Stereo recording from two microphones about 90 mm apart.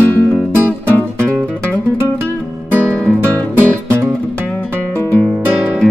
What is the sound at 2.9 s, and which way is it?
Music, 15° left (ahead or behind).